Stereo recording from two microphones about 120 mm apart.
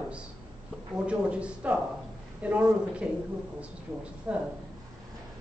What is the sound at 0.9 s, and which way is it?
A woman's voice, 10° right (ahead or behind).